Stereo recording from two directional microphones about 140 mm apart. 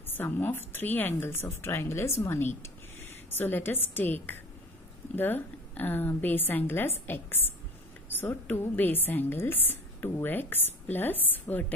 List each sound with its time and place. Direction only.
0.0 s a woman's voice: 15° left (ahead or behind)